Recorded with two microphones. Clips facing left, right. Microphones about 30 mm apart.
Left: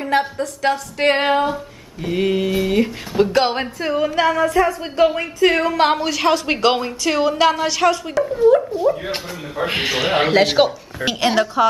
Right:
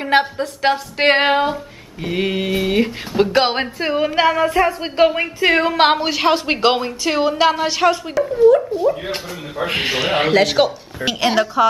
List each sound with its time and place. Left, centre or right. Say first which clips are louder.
0.2 s speech: right 1 dB; right
8.1 s speech: right 3 dB; centre